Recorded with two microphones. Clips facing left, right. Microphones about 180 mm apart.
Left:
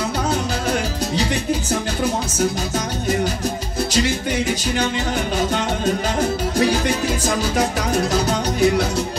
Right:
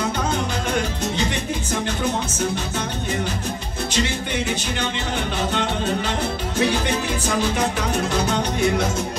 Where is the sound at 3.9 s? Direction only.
40° left (ahead or behind).